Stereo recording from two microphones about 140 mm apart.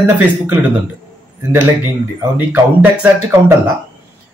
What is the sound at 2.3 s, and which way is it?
Speech, 15° right (ahead or behind).